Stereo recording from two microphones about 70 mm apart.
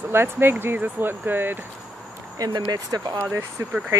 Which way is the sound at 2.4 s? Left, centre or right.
Right.